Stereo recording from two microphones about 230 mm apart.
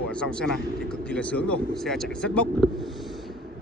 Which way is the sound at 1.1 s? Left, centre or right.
Centre.